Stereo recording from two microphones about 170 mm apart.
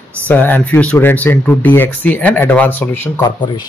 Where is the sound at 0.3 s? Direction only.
10° left (ahead or behind).